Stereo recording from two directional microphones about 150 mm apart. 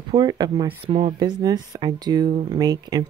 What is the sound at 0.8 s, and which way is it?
Speech, 40° right (ahead or behind).